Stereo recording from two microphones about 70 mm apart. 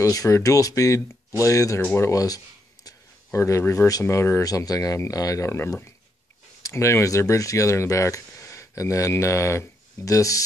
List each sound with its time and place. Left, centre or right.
0.0 s speech: left
3.3 s speech: left
4.4 s speech: left